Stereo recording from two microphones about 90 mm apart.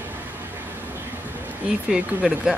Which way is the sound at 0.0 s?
20° right (ahead or behind).